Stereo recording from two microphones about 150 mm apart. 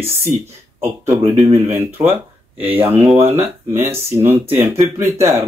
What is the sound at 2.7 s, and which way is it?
Speech, 15° right (ahead or behind).